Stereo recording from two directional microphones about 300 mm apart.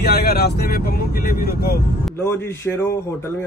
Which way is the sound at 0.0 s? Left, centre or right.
Left.